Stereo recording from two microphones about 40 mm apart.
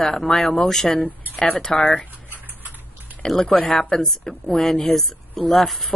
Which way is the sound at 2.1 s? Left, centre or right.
Right.